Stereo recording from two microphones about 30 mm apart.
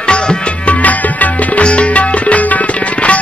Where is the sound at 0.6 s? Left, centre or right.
Left.